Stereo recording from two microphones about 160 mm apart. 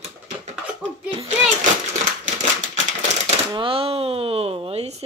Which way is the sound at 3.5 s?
35° right (ahead or behind).